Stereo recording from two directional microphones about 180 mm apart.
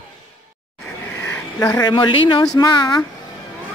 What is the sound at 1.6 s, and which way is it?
Speech, 20° left (ahead or behind).